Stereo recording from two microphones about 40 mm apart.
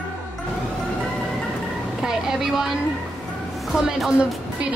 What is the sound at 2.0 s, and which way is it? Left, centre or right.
Speech, centre.